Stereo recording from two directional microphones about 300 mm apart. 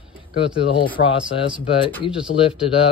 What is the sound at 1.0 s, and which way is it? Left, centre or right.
Speech, centre.